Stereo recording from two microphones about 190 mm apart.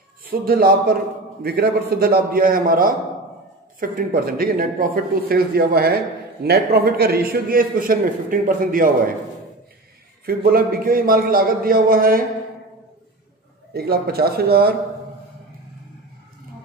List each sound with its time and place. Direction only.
0.2 s a man's voice: 50° right (ahead or behind)
10.2 s a man's voice: 50° right (ahead or behind)
13.7 s a man's voice: 55° right (ahead or behind)